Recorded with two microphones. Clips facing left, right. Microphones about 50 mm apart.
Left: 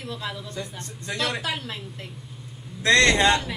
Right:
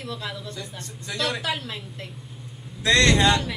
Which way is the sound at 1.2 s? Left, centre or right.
Centre.